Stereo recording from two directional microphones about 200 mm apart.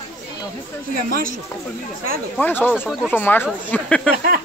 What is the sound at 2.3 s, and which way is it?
Speech, 10° left (ahead or behind).